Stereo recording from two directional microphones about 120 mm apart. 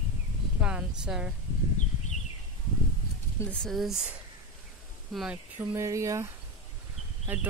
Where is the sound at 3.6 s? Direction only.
Centre (ahead or behind).